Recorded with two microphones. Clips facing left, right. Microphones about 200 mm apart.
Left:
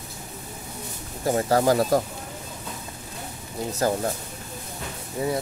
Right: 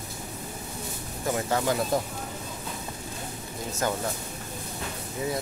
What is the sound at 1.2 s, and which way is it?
Speech, 35° left (ahead or behind).